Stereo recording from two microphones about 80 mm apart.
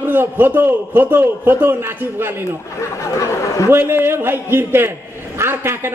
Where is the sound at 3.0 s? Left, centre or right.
Left.